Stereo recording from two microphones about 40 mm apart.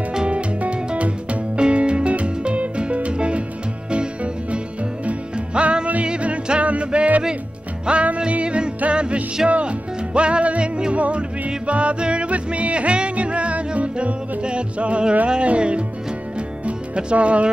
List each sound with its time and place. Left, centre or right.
0.1 s music: right